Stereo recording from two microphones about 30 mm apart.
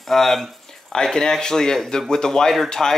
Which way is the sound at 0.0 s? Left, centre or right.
Centre.